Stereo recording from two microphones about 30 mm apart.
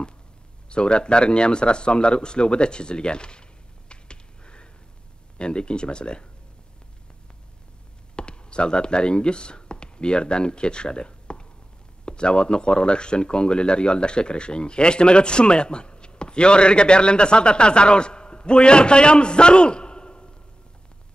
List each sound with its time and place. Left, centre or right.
0.7 s speech: left
3.9 s finger snapping: left
5.4 s speech: left
8.2 s speech: left